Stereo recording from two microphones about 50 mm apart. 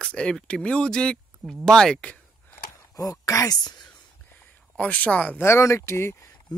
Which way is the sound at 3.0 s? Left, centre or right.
Left.